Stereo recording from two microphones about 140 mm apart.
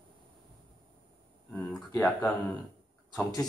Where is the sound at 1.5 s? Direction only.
10° left (ahead or behind).